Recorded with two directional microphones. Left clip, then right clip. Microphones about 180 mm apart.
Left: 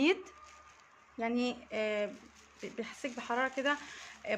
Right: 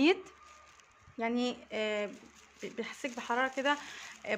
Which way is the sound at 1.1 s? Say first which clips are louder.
Right 1 dB; 15° right (ahead or behind).